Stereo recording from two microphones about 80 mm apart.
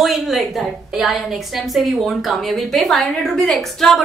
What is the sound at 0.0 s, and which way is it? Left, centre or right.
A woman's voice, centre.